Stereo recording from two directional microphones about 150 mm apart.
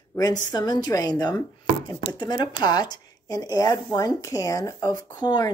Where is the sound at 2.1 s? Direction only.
30° left (ahead or behind).